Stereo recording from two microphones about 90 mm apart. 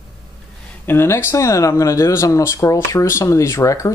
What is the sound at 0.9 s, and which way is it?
Speech, 25° left (ahead or behind).